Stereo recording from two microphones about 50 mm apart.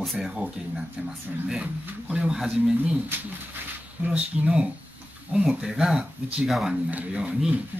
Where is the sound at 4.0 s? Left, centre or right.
Right; by 6.8 s centre.